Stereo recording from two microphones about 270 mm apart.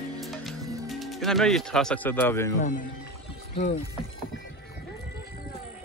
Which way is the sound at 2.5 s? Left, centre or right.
Left.